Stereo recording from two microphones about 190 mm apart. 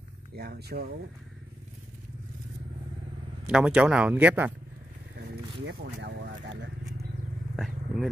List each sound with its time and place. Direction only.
0.4 s speech: 60° right (ahead or behind)
3.4 s speech: 5° right (ahead or behind)
5.1 s a sound: 60° right (ahead or behind)
7.5 s speech: centre (ahead or behind)